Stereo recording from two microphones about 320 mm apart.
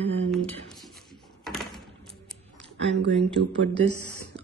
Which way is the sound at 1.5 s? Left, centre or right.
Centre.